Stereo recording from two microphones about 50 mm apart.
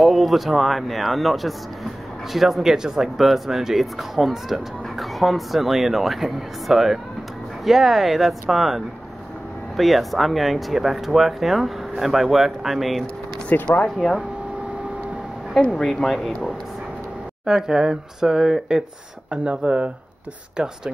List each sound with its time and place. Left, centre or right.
0.0 s speech: centre
13.5 s speech: left
13.8 s speech: centre
15.7 s speech: centre
17.5 s speech: centre
19.3 s speech: right